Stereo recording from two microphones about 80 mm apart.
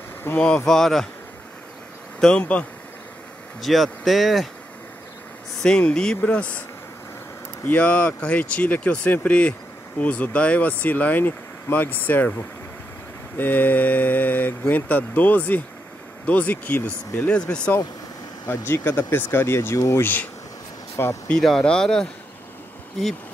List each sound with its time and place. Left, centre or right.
0.2 s speech: left
0.7 s speech: centre
2.1 s speech: centre
3.6 s speech: centre
5.6 s speech: centre
7.6 s speech: centre
13.4 s speech: left
18.5 s speech: left
20.0 s speech: left
20.9 s speech: left
21.3 s speech: centre